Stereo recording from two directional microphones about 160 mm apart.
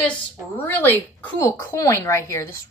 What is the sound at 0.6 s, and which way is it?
A woman's voice, 10° left (ahead or behind).